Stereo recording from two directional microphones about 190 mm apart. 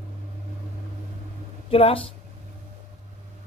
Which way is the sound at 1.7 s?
30° left (ahead or behind).